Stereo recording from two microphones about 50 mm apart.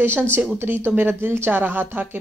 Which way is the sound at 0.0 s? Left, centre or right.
Right.